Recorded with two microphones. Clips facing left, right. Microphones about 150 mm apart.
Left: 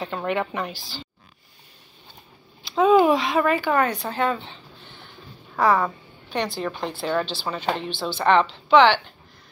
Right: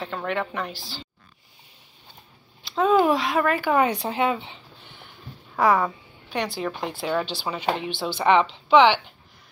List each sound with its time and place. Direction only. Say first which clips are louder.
0.0 s speech: left 2 dB; 5° left (ahead or behind)
0.7 s speech: even; 30° right (ahead or behind)
2.7 s a sound: left 3 dB; 5° left (ahead or behind)
3.2 s speech: left 2 dB; 5° right (ahead or behind)
4.0 s a sound: right 1 dB; 15° right (ahead or behind)
5.6 s a woman's voice: even; 10° right (ahead or behind)